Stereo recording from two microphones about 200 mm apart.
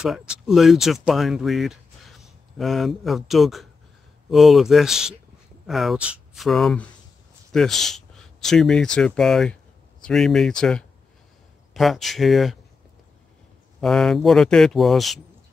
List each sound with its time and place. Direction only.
0.0 s speech: 5° right (ahead or behind)
13.7 s speech: centre (ahead or behind)